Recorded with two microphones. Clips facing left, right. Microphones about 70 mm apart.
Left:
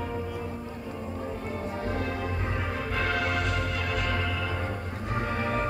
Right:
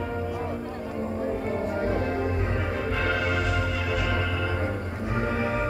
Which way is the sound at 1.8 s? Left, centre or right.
Right.